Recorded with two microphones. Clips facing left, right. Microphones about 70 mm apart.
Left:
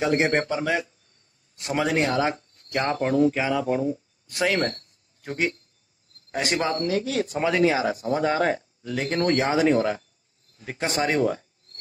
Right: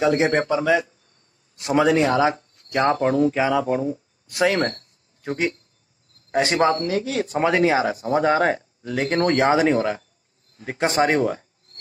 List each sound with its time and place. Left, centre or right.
0.0 s a man's voice: right